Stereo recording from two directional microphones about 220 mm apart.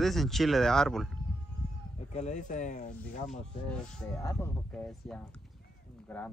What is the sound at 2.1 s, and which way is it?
Speech, 30° left (ahead or behind).